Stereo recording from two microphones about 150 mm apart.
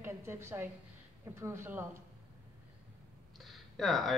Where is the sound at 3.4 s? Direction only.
Centre (ahead or behind).